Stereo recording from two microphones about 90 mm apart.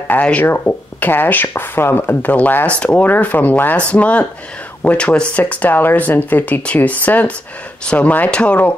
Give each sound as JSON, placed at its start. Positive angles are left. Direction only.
{"t": 0.1, "sound": "speech", "side_deg": 15}